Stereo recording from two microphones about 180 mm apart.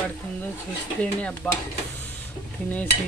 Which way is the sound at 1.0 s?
5° left (ahead or behind).